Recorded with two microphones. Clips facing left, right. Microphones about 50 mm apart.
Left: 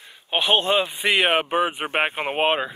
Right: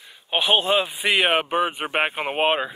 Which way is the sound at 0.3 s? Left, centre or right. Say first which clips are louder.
Even; centre.